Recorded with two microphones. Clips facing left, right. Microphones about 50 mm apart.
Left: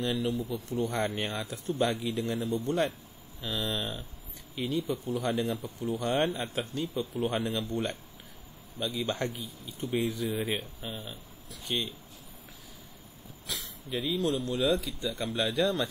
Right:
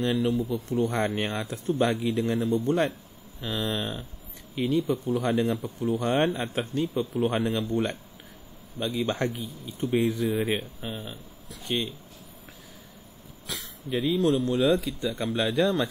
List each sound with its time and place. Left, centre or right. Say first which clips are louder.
0.0 s speech: right 5 dB; right
13.5 s speech: right 4 dB; right